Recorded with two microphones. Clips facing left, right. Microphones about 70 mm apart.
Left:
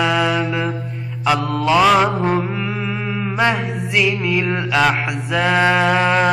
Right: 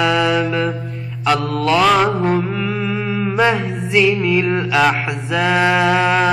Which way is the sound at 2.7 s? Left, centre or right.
Centre.